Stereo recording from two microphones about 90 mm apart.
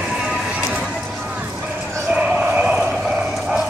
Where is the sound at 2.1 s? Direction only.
15° right (ahead or behind).